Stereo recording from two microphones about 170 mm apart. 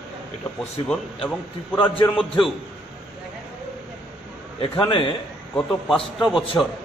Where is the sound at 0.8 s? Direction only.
5° left (ahead or behind).